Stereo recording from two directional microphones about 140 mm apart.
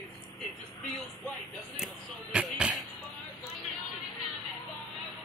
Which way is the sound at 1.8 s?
5° right (ahead or behind).